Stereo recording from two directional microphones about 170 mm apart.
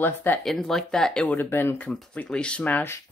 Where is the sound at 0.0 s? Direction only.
10° left (ahead or behind).